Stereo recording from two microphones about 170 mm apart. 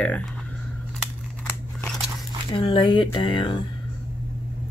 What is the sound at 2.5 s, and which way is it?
Speech, 30° left (ahead or behind).